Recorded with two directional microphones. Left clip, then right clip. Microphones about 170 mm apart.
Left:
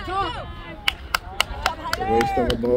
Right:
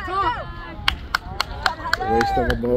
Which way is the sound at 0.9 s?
60° left (ahead or behind).